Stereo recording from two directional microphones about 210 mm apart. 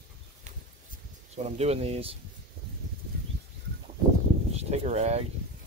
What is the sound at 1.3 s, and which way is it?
Speech, 30° right (ahead or behind).